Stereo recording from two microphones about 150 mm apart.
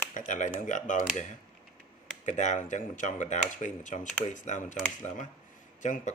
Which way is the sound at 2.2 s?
55° left (ahead or behind).